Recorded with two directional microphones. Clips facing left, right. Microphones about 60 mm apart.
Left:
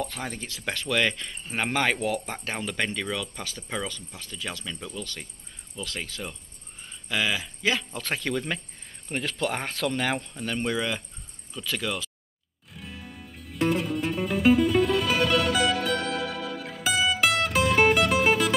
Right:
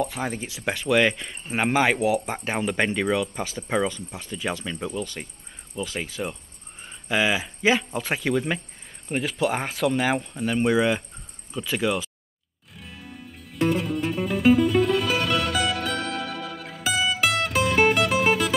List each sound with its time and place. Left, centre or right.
0.0 s speech: centre
12.7 s music: centre